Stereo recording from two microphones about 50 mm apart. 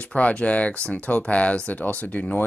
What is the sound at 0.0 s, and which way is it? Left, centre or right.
Speech, left.